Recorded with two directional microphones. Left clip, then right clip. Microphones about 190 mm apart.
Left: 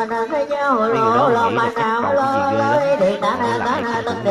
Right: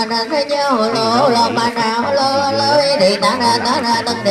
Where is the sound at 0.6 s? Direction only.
55° right (ahead or behind).